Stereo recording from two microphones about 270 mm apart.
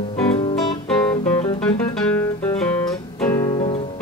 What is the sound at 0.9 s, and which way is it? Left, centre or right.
Guitar, centre.